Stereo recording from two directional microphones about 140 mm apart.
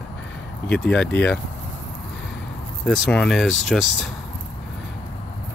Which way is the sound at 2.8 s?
5° left (ahead or behind).